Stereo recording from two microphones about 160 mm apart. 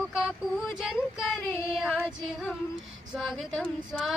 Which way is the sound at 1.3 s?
5° right (ahead or behind).